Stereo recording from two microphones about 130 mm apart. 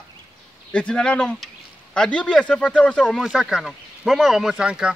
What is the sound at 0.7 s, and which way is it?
Speech, 10° left (ahead or behind).